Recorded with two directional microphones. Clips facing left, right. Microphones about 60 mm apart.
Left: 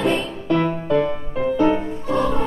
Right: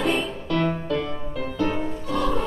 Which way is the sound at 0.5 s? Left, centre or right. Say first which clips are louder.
Left 6 dB; centre.